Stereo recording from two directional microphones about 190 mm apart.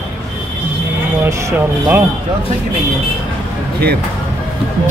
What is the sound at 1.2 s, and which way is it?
Speech, 15° right (ahead or behind).